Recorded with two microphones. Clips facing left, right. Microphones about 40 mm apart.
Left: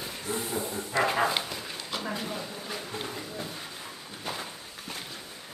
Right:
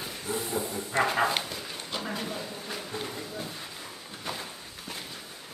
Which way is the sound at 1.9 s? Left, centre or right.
Centre.